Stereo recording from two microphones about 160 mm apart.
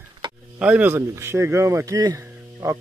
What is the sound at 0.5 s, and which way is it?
Speech, 10° right (ahead or behind).